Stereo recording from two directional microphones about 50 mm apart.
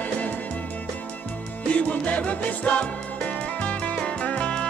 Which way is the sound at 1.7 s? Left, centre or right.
Left.